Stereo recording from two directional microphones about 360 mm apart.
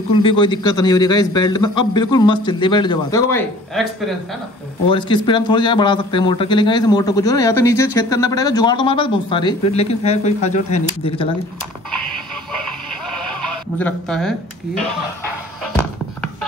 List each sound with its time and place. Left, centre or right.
0.1 s a man's voice: centre
4.8 s a man's voice: centre
13.7 s speech: centre